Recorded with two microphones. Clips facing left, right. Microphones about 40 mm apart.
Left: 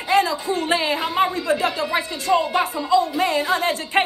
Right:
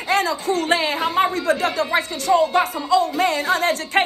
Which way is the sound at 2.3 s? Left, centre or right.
Centre.